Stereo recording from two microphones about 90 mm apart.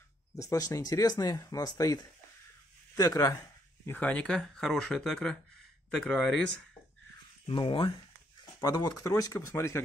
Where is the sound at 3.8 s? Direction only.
20° left (ahead or behind).